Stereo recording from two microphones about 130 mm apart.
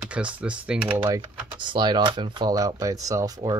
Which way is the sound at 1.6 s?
35° right (ahead or behind).